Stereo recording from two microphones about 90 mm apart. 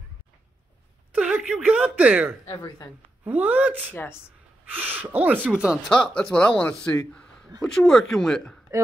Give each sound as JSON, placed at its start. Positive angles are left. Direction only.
{"t": 1.1, "sound": "a sound", "side_deg": -10}
{"t": 1.7, "sound": "speech", "side_deg": -10}
{"t": 2.5, "sound": "speech", "side_deg": 45}
{"t": 3.3, "sound": "speech", "side_deg": -20}
{"t": 3.9, "sound": "speech", "side_deg": 25}
{"t": 4.6, "sound": "speech", "side_deg": -20}
{"t": 5.9, "sound": "speech", "side_deg": 10}
{"t": 7.6, "sound": "speech", "side_deg": 5}